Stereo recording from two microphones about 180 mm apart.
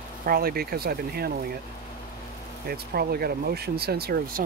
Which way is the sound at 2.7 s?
60° right (ahead or behind).